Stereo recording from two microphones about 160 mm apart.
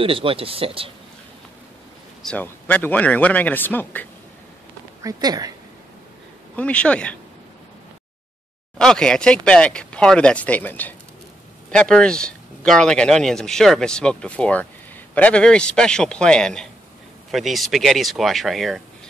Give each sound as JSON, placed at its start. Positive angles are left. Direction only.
{"t": 0.0, "sound": "speech", "side_deg": -35}
{"t": 2.2, "sound": "speech", "side_deg": 10}
{"t": 5.0, "sound": "speech", "side_deg": -25}
{"t": 6.5, "sound": "speech", "side_deg": 10}
{"t": 8.7, "sound": "speech", "side_deg": 5}